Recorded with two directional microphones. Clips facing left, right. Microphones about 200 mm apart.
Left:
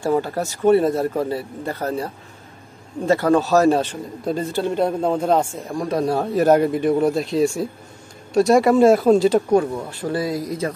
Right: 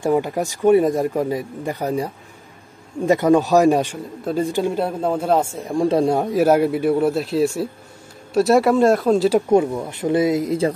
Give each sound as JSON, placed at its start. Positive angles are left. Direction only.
{"t": 0.0, "sound": "speech", "side_deg": -15}
{"t": 3.1, "sound": "speech", "side_deg": -15}
{"t": 5.8, "sound": "speech", "side_deg": -30}
{"t": 9.8, "sound": "speech", "side_deg": -20}